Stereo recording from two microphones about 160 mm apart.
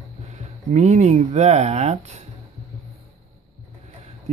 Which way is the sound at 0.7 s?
45° right (ahead or behind).